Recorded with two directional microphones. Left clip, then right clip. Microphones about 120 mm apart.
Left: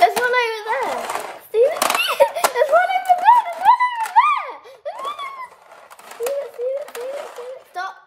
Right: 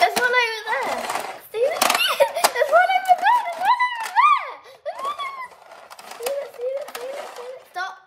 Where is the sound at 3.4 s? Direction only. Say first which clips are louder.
Left 4 dB; 75° left (ahead or behind).